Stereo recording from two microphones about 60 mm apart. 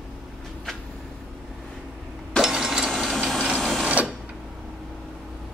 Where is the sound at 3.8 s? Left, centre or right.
Right.